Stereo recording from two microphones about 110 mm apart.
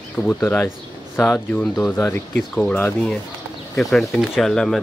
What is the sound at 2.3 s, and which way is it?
Speech, 10° left (ahead or behind).